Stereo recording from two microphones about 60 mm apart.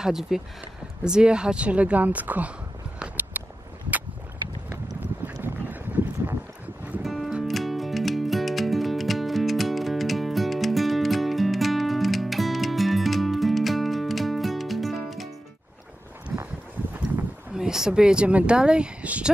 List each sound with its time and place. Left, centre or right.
0.0 s speech: centre; by 2.5 s right
3.3 s a sound: right
5.2 s boat: right
7.0 s music: centre
16.3 s a sound: centre
17.6 s speech: centre